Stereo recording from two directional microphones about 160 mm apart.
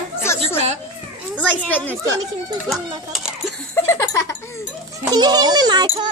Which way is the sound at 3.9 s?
15° left (ahead or behind).